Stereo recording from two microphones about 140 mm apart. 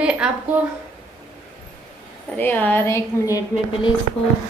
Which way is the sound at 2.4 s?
15° left (ahead or behind).